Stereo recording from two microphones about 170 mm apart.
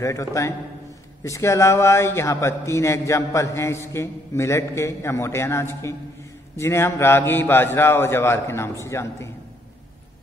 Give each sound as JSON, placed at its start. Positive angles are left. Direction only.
{"t": 0.0, "sound": "a man's voice", "side_deg": 15}